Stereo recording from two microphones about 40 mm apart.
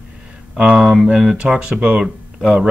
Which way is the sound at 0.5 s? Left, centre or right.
Right.